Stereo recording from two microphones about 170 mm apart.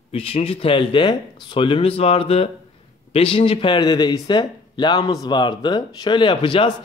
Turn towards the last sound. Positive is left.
turn(degrees=30)  # may be behind; listen again after turning